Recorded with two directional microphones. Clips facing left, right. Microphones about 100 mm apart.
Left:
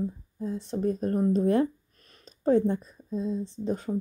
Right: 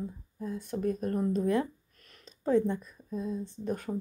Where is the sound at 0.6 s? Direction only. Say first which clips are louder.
Left 3 dB; 35° left (ahead or behind).